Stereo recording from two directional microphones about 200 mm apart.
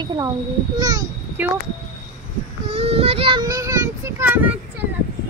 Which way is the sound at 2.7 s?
30° right (ahead or behind).